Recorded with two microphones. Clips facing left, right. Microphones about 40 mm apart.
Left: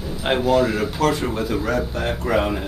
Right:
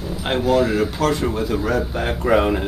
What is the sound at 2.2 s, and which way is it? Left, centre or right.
Speech, centre.